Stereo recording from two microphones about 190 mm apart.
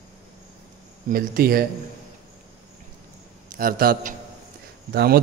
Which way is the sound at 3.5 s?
50° right (ahead or behind).